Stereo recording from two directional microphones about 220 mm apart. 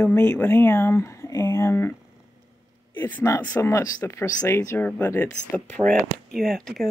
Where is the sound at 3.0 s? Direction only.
10° left (ahead or behind).